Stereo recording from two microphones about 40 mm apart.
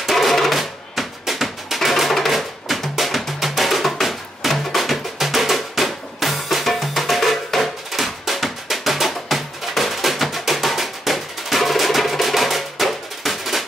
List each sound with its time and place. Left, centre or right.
0.0 s music: centre